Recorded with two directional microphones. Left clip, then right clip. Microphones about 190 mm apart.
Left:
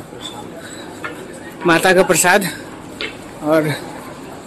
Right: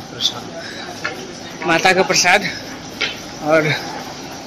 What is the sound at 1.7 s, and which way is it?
Speech, 35° left (ahead or behind).